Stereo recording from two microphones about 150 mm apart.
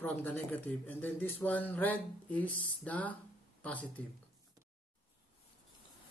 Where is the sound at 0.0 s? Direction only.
10° left (ahead or behind).